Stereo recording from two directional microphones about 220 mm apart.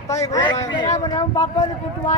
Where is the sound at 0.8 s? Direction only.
30° left (ahead or behind).